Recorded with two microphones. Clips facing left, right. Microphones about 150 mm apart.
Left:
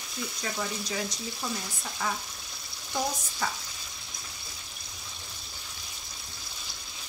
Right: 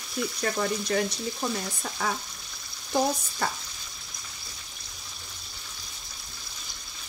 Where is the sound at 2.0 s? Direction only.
80° right.